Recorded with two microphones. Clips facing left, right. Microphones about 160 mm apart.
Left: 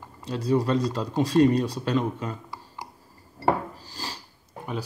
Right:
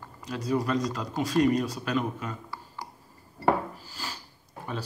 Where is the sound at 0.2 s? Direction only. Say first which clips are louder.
Left 4 dB; 30° left (ahead or behind).